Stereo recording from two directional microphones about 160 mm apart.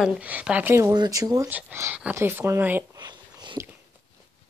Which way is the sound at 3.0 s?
25° right (ahead or behind).